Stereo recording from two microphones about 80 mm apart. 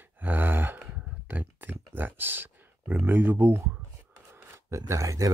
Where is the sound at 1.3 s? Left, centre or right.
Right.